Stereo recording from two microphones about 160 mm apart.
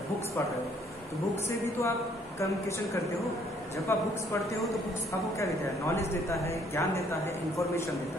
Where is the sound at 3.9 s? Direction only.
15° left (ahead or behind).